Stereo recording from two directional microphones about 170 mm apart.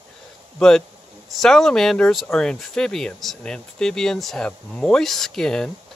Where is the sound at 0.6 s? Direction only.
5° left (ahead or behind).